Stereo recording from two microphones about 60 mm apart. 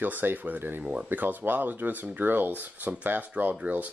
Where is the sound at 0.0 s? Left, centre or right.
Right.